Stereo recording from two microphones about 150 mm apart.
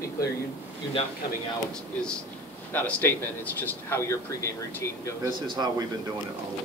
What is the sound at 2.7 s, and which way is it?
Speech, 15° left (ahead or behind).